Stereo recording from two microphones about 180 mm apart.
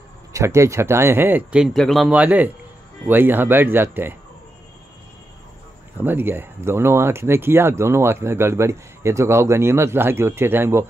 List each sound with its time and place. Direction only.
0.3 s speech: 15° right (ahead or behind)
5.9 s speech: 10° right (ahead or behind)